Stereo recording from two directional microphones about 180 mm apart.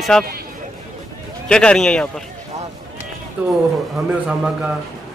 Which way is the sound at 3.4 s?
10° right (ahead or behind).